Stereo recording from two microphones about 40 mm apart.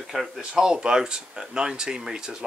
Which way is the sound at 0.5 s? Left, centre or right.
Centre.